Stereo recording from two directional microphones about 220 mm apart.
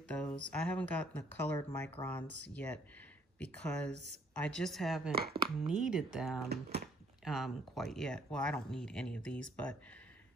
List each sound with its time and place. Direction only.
0.1 s a sound: 5° left (ahead or behind)
0.5 s speech: 5° left (ahead or behind)
5.1 s speech: 45° right (ahead or behind)
5.7 s speech: 5° right (ahead or behind)